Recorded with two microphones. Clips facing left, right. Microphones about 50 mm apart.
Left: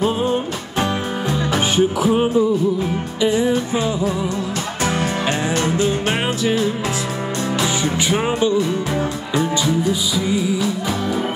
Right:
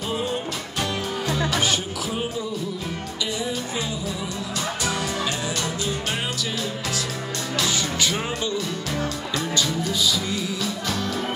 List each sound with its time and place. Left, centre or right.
0.0 s music: left
5.6 s music: left; by 11.1 s centre